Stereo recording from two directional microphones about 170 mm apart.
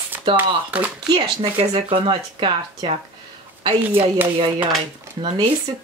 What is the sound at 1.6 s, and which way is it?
Speech, 35° right (ahead or behind).